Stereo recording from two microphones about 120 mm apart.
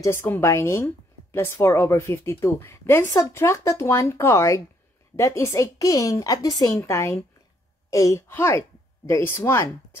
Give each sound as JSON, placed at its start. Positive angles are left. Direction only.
{"t": 0.0, "sound": "speech", "side_deg": 20}